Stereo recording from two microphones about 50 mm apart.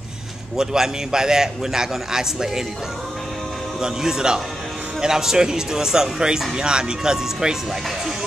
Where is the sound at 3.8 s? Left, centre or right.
Centre.